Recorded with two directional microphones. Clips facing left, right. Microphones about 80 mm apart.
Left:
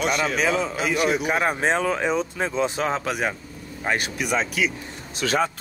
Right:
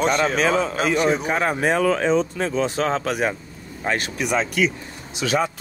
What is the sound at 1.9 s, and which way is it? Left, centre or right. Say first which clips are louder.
Speech: right 4 dB; centre.